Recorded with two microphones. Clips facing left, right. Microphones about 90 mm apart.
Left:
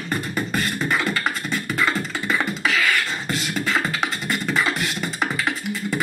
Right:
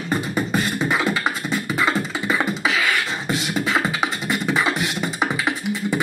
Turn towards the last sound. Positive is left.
turn(degrees=0)  # may be behind; listen again after turning